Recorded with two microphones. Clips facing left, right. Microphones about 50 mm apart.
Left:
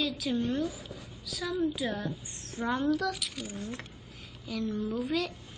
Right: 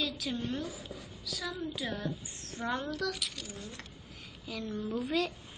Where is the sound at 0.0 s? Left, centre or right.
Centre.